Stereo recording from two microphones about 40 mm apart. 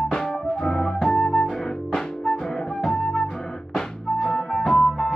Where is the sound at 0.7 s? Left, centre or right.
Centre.